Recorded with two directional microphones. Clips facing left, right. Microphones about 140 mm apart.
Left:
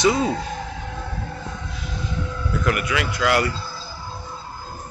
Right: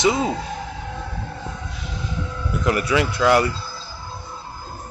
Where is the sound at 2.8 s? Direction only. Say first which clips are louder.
Right 4 dB; 30° right (ahead or behind).